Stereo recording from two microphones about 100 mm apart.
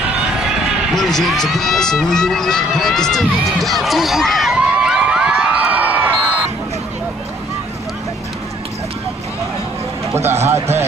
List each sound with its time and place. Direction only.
0.5 s speech: 5° left (ahead or behind)
4.6 s cheering: 10° right (ahead or behind)
10.1 s speech: 25° right (ahead or behind)